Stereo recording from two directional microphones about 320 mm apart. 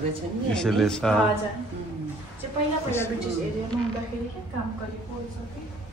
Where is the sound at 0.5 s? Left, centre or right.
Centre.